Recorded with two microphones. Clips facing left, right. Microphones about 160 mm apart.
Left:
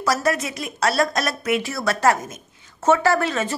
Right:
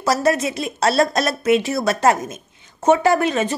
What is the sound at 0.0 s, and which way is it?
A woman's voice, 25° right (ahead or behind).